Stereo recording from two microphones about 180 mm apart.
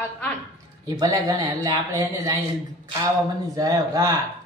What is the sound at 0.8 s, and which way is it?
Speech, 20° right (ahead or behind).